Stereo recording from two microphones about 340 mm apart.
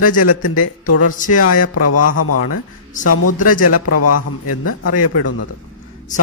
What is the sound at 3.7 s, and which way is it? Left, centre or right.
A man's voice, left.